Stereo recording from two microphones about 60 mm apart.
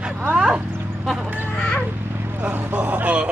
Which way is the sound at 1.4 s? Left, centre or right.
Left.